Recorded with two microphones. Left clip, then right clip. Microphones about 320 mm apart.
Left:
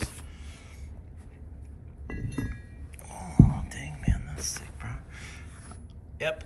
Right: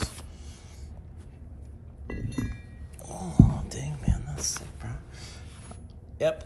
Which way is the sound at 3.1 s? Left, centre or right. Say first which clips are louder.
Right 3 dB; right.